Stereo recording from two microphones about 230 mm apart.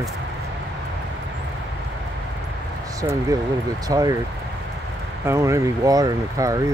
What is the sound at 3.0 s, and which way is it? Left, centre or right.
Speech, centre.